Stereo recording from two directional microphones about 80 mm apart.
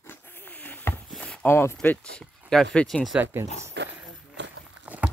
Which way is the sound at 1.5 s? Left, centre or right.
Left.